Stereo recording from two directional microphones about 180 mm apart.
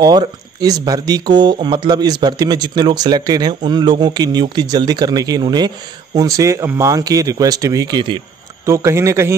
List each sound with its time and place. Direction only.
0.0 s speech: 20° right (ahead or behind)